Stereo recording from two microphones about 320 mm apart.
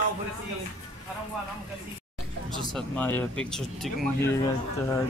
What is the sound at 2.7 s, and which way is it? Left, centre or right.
Speech, centre.